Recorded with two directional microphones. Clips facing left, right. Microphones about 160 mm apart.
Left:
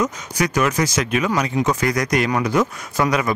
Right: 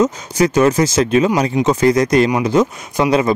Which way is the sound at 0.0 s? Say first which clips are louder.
Right 7 dB; 25° right (ahead or behind).